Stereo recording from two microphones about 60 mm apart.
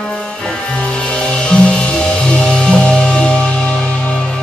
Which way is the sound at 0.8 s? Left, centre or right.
Centre.